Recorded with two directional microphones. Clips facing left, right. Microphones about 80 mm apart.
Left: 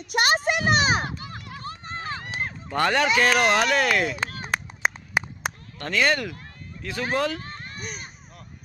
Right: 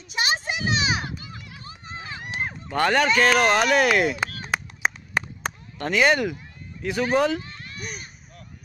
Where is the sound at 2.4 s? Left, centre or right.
Centre.